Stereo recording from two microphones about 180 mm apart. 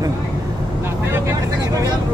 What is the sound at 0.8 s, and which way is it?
Vehicle, 15° right (ahead or behind).